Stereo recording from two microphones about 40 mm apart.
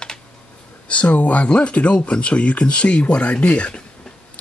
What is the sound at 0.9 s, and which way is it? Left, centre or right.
Speech, left.